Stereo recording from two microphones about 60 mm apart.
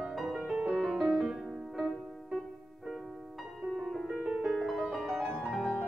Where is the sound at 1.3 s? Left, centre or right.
Centre.